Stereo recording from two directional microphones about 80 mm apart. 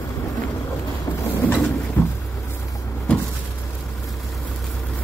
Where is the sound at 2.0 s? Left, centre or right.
Left.